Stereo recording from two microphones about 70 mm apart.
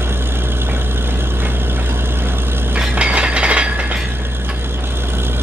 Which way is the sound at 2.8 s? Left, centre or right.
Centre.